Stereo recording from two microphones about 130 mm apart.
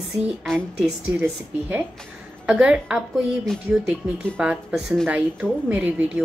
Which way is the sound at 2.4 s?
10° right (ahead or behind).